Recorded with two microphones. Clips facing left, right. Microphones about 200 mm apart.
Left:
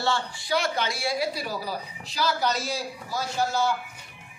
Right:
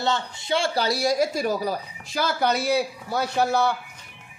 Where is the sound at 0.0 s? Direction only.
20° right (ahead or behind).